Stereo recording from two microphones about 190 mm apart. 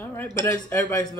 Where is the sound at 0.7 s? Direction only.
15° left (ahead or behind).